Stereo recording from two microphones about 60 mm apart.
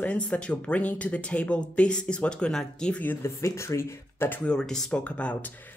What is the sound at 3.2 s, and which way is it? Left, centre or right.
Speech, left.